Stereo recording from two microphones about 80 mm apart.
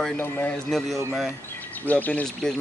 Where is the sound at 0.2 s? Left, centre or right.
Left.